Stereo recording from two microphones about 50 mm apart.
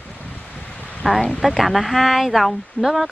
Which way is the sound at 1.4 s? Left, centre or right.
Centre.